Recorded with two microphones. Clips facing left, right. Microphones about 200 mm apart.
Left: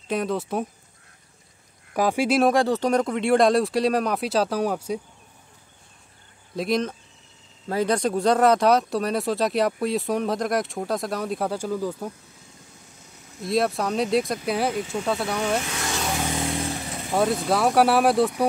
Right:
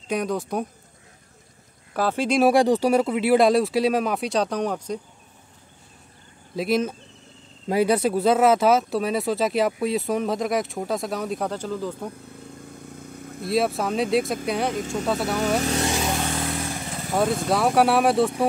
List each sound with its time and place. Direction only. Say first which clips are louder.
0.1 s speech: even; centre (ahead or behind)
2.0 s speech: left 1 dB; 10° left (ahead or behind)
2.4 s speech: right 6 dB; 15° right (ahead or behind); by 5.0 s 5° left (ahead or behind)
6.5 s speech: right 1 dB; 5° right (ahead or behind)
12.3 s vehicle: right 11 dB; 60° right (ahead or behind)
13.5 s speech: even; centre (ahead or behind)
15.6 s speech: right 8 dB; 35° right (ahead or behind)
16.0 s vehicle: right 2 dB; centre (ahead or behind)
16.3 s vehicle: left 1 dB; 15° left (ahead or behind)
17.1 s speech: even; centre (ahead or behind)